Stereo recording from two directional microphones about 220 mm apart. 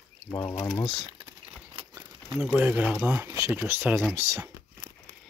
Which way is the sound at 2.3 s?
Centre (ahead or behind).